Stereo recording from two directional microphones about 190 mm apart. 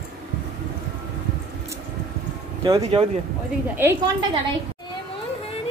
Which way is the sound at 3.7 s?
10° right (ahead or behind).